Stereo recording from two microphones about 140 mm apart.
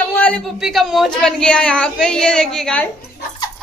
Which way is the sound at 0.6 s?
Centre (ahead or behind).